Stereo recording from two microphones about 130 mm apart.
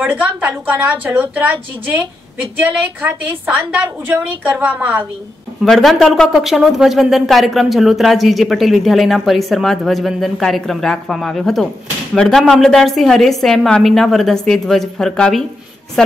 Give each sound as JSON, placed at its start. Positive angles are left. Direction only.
{"t": 0.0, "sound": "a woman's voice", "side_deg": -10}
{"t": 5.6, "sound": "speech", "side_deg": 0}